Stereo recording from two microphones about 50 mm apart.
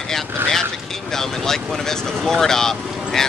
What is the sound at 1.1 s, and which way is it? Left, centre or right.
Speech, centre.